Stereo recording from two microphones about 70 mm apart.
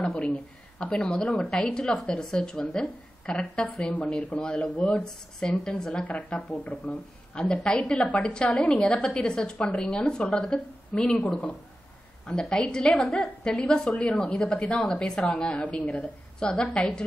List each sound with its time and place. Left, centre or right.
0.0 s a woman's voice: centre
0.7 s a woman's voice: centre
12.3 s a woman's voice: centre